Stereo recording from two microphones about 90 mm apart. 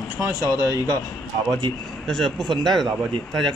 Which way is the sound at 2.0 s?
5° left (ahead or behind).